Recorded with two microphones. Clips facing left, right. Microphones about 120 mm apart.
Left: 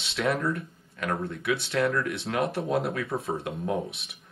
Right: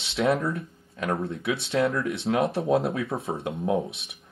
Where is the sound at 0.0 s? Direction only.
25° right (ahead or behind).